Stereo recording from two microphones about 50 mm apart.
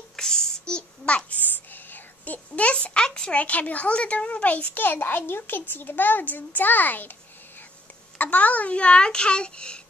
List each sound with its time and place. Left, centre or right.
0.1 s a sound: centre
1.4 s speech: left
4.7 s speech: left
8.2 s a child's voice: left